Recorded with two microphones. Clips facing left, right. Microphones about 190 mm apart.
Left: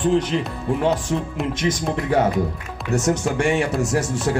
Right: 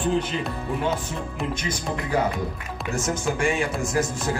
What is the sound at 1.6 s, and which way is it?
Speech, 90° left.